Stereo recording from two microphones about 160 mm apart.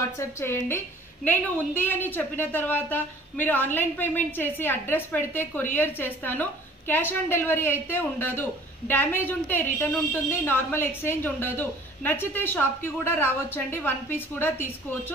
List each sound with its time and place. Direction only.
0.2 s a woman's voice: 15° left (ahead or behind)
1.8 s a woman's voice: 10° left (ahead or behind)